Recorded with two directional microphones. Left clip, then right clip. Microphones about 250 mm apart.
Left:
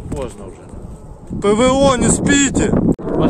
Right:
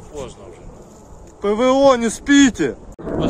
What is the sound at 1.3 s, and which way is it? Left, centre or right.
Speech, centre.